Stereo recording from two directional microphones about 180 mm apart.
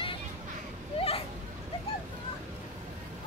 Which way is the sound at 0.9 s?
30° left (ahead or behind).